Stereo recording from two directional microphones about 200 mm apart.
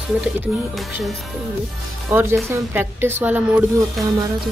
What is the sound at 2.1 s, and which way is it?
Speech, 10° right (ahead or behind).